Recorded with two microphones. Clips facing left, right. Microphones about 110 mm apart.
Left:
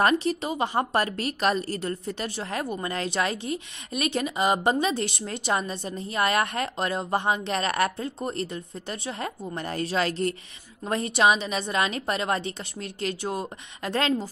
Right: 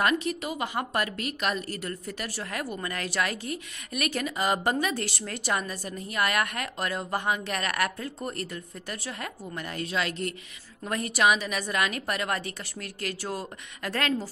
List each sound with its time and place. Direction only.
0.0 s a woman's voice: 30° left (ahead or behind)